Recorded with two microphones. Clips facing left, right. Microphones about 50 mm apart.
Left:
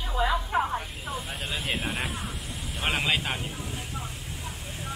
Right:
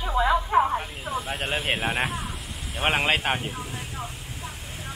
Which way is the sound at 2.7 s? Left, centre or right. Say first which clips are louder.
Right 4 dB; right.